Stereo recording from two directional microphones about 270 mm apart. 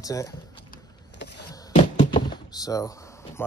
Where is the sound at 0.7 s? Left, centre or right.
Left.